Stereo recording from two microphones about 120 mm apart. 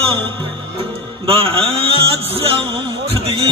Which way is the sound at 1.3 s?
50° right (ahead or behind).